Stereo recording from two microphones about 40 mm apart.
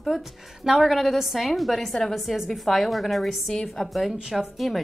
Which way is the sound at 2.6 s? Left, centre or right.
Centre.